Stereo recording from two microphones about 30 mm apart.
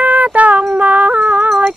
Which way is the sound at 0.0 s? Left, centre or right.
Right.